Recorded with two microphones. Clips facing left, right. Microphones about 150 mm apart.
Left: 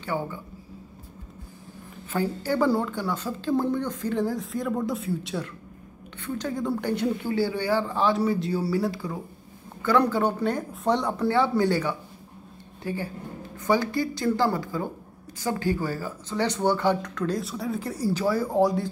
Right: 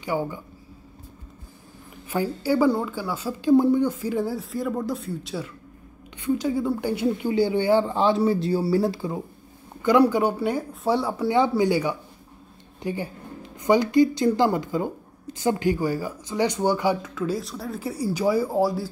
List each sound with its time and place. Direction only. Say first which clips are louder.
0.0 s speech: right 3 dB; 10° right (ahead or behind)
2.0 s speech: right 3 dB; 10° right (ahead or behind)
6.1 s speech: right 6 dB; 10° right (ahead or behind)
7.3 s speech: right 7 dB; 20° right (ahead or behind)
9.8 s speech: right 4 dB; 15° right (ahead or behind)